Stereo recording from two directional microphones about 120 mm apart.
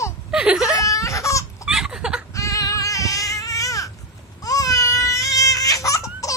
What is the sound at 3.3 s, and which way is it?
Baby cry, 30° left (ahead or behind).